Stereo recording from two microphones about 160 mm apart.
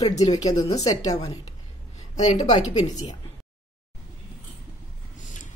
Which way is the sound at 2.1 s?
50° left (ahead or behind).